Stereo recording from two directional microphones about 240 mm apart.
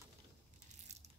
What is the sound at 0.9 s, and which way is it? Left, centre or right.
Crushing, right.